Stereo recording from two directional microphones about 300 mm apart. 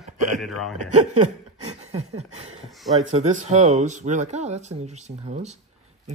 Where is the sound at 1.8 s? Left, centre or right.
Right.